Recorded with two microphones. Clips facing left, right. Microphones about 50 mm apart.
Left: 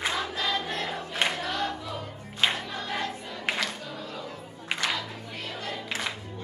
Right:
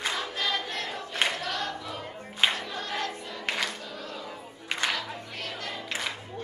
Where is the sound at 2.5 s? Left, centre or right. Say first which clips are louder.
Left 1 dB; centre.